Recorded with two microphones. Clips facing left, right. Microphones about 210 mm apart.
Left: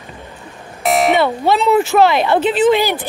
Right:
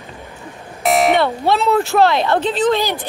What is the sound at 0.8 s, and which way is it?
Speech, centre (ahead or behind).